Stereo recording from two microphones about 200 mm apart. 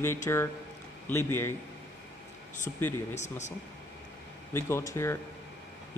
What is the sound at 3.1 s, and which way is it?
Speech, 35° left (ahead or behind).